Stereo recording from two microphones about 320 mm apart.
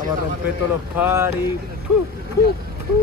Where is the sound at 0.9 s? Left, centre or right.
Centre.